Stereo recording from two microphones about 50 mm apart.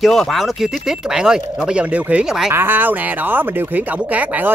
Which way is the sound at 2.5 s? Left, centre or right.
Right.